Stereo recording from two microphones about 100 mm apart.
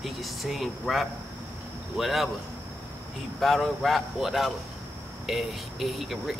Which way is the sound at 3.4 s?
Centre (ahead or behind).